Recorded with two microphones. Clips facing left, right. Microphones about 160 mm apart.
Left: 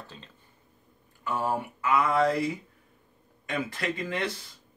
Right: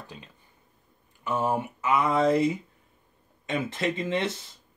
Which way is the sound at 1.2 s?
20° right (ahead or behind).